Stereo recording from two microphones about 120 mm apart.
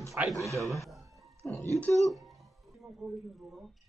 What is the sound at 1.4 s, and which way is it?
Speech, 15° left (ahead or behind).